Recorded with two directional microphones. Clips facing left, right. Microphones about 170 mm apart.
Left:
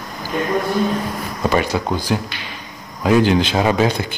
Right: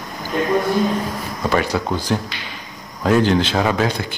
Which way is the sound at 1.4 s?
15° left (ahead or behind).